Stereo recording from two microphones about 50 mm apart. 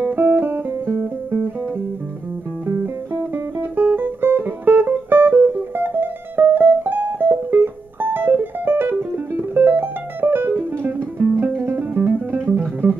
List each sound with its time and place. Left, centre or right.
0.1 s music: right
2.6 s music: right